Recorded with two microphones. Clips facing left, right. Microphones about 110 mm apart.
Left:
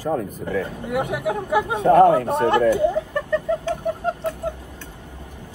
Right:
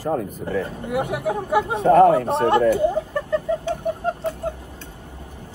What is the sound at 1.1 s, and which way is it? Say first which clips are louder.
Speech: right 1 dB; 25° right (ahead or behind).